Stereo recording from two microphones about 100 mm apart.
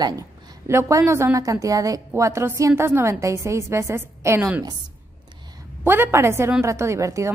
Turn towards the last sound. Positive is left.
turn(degrees=-30)  # may be behind; listen again after turning